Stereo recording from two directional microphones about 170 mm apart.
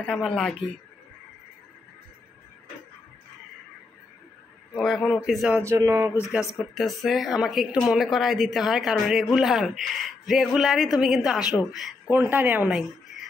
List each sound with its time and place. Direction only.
0.0 s a woman's voice: centre (ahead or behind)
4.7 s a woman's voice: centre (ahead or behind)
5.5 s speech: 15° right (ahead or behind)
6.6 s a woman's voice: centre (ahead or behind)
12.1 s speech: 10° right (ahead or behind)